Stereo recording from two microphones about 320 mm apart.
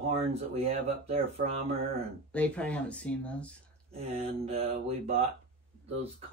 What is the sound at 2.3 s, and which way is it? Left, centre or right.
Speech, centre.